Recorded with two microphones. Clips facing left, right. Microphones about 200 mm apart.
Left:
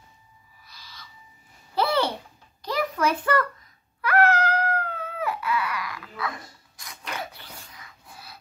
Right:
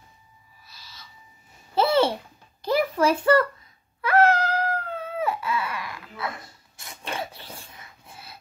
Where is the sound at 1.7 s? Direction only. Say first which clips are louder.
Right 4 dB; 25° right (ahead or behind).